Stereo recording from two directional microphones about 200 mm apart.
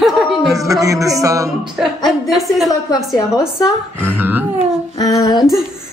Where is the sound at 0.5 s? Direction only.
15° right (ahead or behind).